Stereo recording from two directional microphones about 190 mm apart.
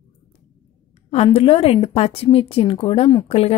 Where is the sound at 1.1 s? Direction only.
30° left (ahead or behind).